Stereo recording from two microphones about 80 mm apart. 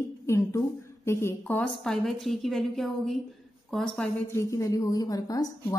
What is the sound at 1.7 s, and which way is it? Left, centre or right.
A woman's voice, centre.